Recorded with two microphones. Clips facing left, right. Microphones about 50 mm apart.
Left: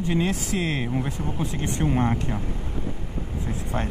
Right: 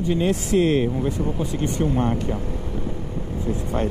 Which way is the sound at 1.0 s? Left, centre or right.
Centre.